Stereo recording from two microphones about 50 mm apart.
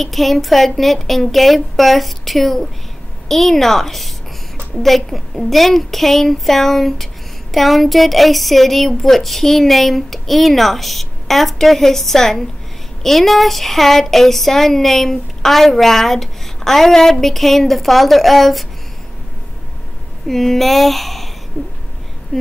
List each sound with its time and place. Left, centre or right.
0.0 s speech: centre
20.2 s speech: centre
21.5 s a sound: left
22.3 s speech: centre